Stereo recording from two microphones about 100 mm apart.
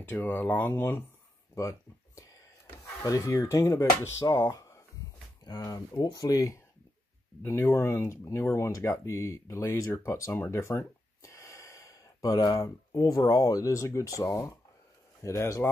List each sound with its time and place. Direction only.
0.1 s speech: 20° left (ahead or behind)
5.7 s speech: 45° left (ahead or behind)